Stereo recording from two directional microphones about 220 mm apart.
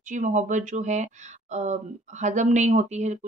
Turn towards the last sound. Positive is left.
turn(degrees=-30)  # may be behind; listen again after turning